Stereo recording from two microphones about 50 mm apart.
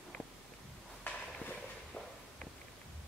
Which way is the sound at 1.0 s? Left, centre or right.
Left.